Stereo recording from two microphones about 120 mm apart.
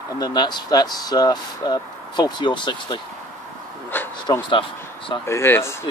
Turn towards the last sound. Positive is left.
turn(degrees=20)  # may be behind; listen again after turning